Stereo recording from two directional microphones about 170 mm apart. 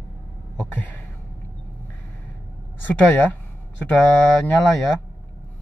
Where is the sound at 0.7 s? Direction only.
10° left (ahead or behind).